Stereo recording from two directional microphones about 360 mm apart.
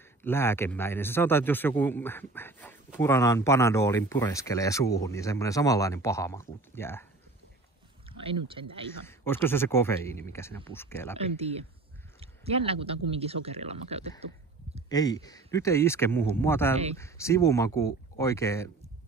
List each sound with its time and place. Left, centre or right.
0.2 s a man's voice: centre
8.2 s speech: centre
9.0 s a man's voice: centre
11.1 s speech: centre
14.9 s a man's voice: centre